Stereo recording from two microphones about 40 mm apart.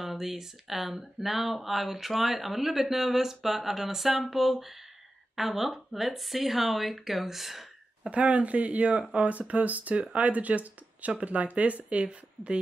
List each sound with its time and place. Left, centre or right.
0.0 s speech: centre
8.1 s speech: right